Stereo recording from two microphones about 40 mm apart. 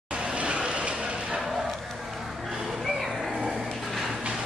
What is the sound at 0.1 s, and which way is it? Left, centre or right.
Vehicle, right.